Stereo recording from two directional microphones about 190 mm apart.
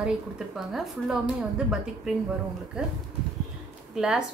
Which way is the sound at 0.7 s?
Centre (ahead or behind).